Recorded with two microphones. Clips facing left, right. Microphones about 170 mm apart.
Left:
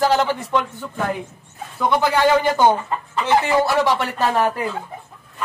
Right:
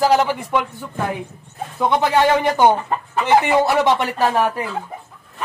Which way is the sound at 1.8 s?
20° right (ahead or behind).